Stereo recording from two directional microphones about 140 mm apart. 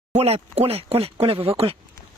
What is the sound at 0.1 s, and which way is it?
Speech, 45° right (ahead or behind).